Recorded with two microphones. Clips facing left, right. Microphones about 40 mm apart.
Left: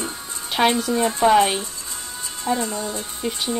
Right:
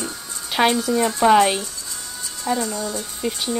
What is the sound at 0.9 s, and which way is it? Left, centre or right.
Speech, left.